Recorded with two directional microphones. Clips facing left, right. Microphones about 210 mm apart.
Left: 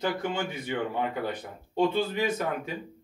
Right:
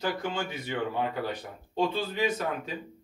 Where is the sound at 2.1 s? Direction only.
10° left (ahead or behind).